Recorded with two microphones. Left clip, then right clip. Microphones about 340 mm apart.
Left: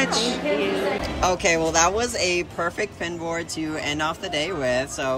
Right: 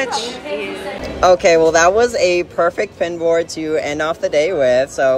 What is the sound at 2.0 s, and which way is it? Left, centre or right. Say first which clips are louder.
Speech: right 9 dB; centre.